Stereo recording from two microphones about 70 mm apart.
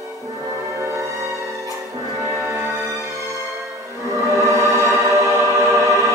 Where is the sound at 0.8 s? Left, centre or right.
Right.